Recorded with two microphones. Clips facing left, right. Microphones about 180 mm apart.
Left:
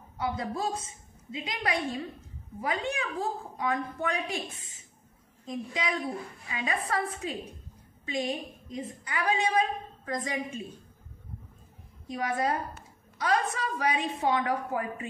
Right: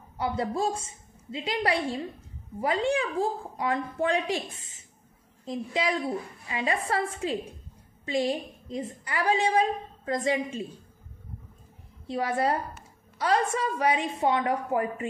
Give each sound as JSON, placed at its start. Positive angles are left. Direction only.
{"t": 0.2, "sound": "a woman's voice", "side_deg": -30}
{"t": 5.4, "sound": "a woman's voice", "side_deg": -30}
{"t": 12.1, "sound": "a woman's voice", "side_deg": -30}